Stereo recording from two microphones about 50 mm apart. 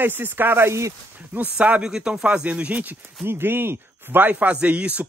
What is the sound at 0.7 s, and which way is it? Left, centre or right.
Speech, right.